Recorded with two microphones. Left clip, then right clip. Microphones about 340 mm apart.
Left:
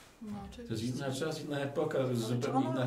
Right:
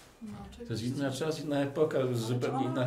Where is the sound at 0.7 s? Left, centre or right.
Right.